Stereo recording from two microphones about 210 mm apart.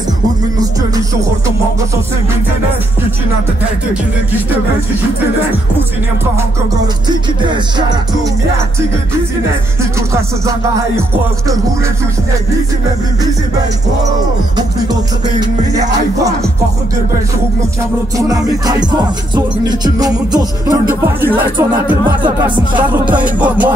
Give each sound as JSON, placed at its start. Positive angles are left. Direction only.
{"t": 18.1, "sound": "music", "side_deg": -15}
{"t": 23.1, "sound": "music", "side_deg": -5}